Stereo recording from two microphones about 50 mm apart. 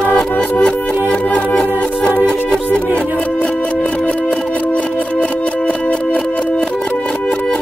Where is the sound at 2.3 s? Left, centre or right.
Centre.